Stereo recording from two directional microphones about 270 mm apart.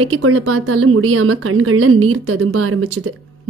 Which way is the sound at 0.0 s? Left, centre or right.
Right.